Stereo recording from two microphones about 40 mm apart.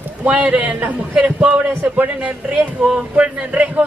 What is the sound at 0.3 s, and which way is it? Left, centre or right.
Speech, right.